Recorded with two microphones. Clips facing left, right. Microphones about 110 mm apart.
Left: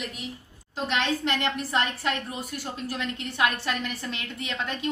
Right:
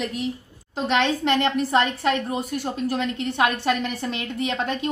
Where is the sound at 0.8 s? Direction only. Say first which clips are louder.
Right 6 dB; 25° right (ahead or behind).